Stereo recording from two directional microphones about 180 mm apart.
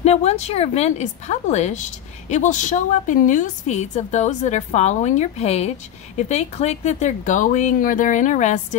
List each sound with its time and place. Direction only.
0.0 s speech: 35° left (ahead or behind)